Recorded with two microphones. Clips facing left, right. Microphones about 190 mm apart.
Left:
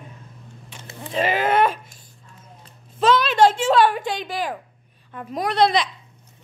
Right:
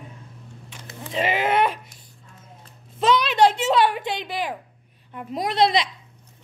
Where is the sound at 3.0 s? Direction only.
20° right (ahead or behind).